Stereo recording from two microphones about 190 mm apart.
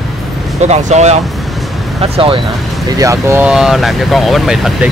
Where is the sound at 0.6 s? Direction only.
35° right (ahead or behind).